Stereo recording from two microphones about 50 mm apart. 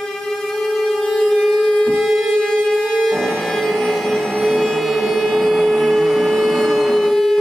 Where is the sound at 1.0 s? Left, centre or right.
Centre.